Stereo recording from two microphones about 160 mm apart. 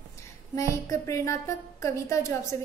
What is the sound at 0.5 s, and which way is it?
A woman's voice, 20° left (ahead or behind).